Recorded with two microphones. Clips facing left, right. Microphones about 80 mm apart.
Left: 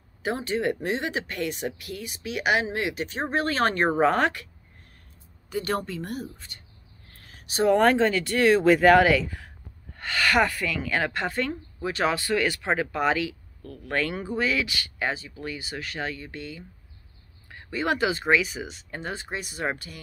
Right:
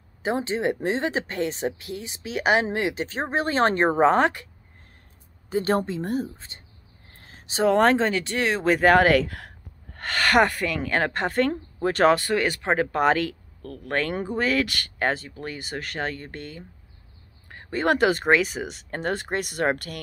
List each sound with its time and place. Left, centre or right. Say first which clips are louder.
0.2 s speech: right 2 dB; right
5.5 s speech: right 5 dB; right
9.1 s speech: right 3 dB; right
9.9 s speech: right 3 dB; right
12.3 s speech: right 2 dB; right
12.9 s speech: right 4 dB; right
17.6 s speech: right 4 dB; right